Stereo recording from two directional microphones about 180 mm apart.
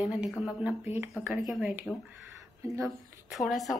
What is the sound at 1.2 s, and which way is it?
Speech, centre (ahead or behind).